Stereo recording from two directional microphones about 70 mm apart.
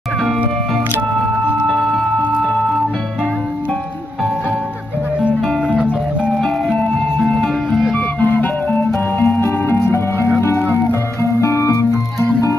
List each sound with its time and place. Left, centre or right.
1.7 s music: centre
6.8 s music: centre
7.9 s music: left
9.4 s music: left